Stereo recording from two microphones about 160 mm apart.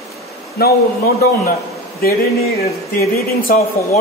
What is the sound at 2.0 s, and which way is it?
A man's voice, 70° left (ahead or behind).